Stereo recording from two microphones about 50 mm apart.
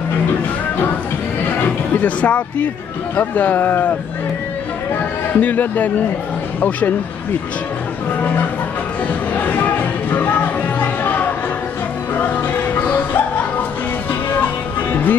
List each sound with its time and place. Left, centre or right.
2.0 s speech: left
5.3 s speech: left
8.2 s music: left
14.3 s music: left